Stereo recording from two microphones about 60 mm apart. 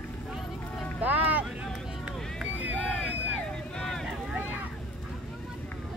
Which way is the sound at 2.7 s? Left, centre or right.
Centre.